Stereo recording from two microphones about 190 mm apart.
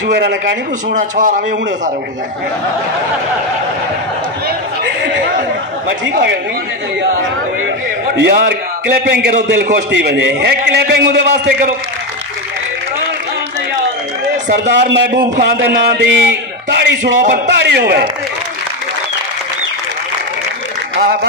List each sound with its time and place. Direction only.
0.0 s a man's voice: 60° right (ahead or behind)
0.9 s a man's voice: 45° right (ahead or behind)
4.5 s chatter: 60° right (ahead or behind)
8.2 s a man's voice: 60° right (ahead or behind)
14.7 s a man's voice: 65° right (ahead or behind)
21.0 s a man's voice: 55° right (ahead or behind)